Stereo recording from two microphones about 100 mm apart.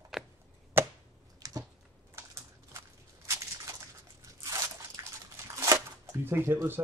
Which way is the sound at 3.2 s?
30° right (ahead or behind).